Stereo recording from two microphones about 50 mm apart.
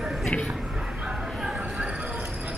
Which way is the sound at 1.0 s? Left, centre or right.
Centre.